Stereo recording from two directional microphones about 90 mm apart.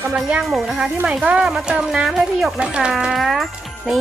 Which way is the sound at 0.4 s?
5° right (ahead or behind).